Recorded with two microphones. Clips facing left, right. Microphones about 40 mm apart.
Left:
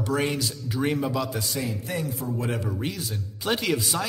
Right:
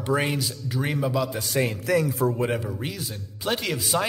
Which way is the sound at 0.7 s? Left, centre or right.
Centre.